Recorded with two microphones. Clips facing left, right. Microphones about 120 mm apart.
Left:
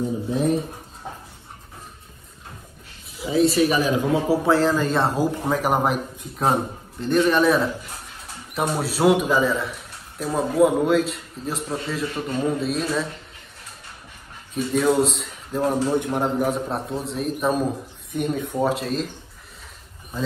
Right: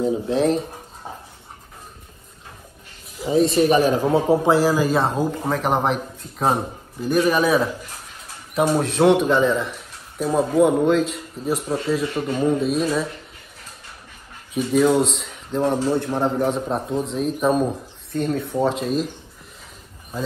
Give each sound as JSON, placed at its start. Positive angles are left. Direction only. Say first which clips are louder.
{"t": 0.0, "sound": "speech", "louder": "right 3 dB", "side_deg": -85}
{"t": 3.5, "sound": "speech", "louder": "right 3 dB", "side_deg": -40}
{"t": 4.5, "sound": "a man's voice", "louder": "right 2 dB", "side_deg": -10}
{"t": 14.5, "sound": "a man's voice", "louder": "right 3 dB", "side_deg": 0}
{"t": 18.1, "sound": "speech", "louder": "right 2 dB", "side_deg": 15}
{"t": 18.6, "sound": "a man's voice", "louder": "right 2 dB", "side_deg": 5}